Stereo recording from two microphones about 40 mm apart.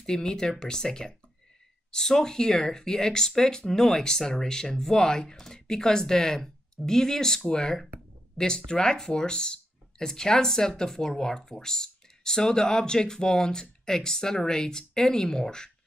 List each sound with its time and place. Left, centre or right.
0.0 s speech: centre